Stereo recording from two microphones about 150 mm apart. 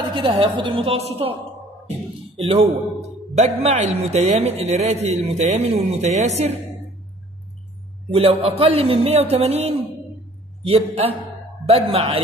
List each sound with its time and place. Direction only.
0.1 s a man's voice: 35° right (ahead or behind)
2.3 s speech: 45° right (ahead or behind)
8.1 s a man's voice: 40° right (ahead or behind)